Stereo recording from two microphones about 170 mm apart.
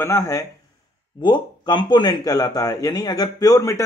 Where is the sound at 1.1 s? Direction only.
30° left (ahead or behind).